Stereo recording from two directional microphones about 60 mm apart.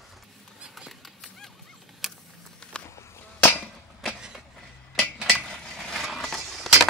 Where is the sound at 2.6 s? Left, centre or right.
Centre.